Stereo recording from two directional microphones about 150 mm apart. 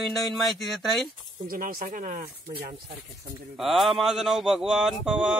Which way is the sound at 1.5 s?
75° right (ahead or behind).